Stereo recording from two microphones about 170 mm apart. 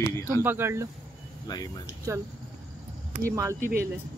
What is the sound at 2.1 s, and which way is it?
Speech, 20° right (ahead or behind).